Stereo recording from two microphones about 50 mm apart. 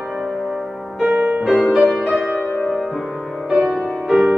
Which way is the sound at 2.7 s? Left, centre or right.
Centre.